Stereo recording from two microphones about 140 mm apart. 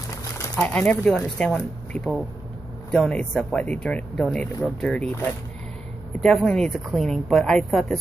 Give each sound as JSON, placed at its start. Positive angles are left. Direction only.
{"t": 0.6, "sound": "a woman's voice", "side_deg": 10}
{"t": 2.9, "sound": "a woman's voice", "side_deg": 5}
{"t": 6.2, "sound": "a woman's voice", "side_deg": 5}